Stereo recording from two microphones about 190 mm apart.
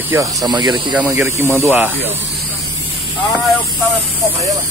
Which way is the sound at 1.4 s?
10° left (ahead or behind).